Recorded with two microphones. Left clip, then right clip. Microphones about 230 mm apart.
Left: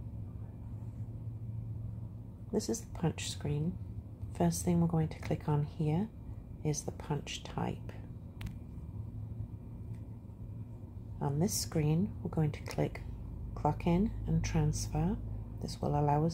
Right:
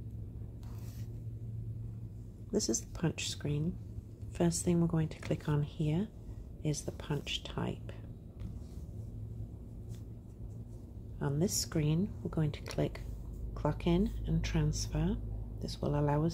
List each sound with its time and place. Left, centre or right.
2.5 s a woman's voice: centre
11.1 s a woman's voice: centre